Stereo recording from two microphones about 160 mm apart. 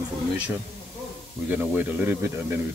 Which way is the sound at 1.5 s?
10° right (ahead or behind).